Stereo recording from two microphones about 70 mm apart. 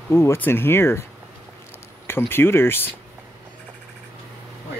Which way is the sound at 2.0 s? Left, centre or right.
Left.